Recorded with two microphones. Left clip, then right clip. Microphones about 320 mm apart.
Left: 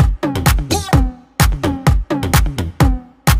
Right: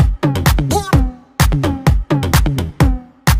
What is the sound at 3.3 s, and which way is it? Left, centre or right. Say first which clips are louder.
Music: even; right.